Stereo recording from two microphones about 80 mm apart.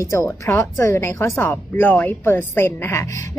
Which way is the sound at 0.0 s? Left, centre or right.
Left.